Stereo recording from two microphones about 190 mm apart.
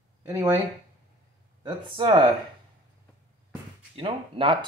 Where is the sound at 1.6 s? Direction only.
25° right (ahead or behind).